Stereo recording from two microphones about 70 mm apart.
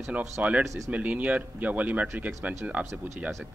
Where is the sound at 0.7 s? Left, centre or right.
Right.